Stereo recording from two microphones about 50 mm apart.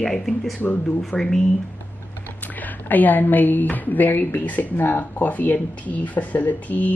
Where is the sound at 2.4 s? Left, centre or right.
Left.